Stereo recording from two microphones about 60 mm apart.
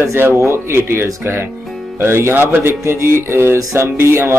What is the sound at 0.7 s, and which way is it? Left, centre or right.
Speech, right.